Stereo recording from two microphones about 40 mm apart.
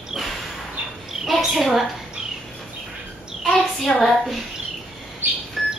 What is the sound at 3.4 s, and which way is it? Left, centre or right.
Speech, centre.